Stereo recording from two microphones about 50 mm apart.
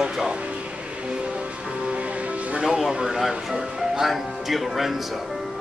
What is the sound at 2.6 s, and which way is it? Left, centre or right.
Speech, centre.